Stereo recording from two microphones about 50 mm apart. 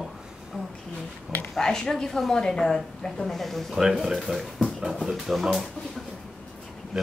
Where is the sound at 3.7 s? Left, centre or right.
Centre.